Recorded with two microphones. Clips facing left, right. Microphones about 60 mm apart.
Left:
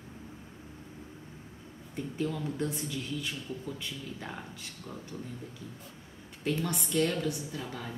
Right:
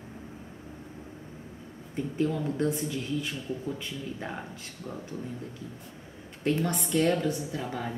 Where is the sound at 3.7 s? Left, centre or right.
Centre.